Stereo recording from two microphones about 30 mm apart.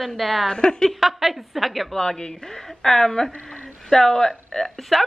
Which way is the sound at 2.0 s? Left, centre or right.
Left.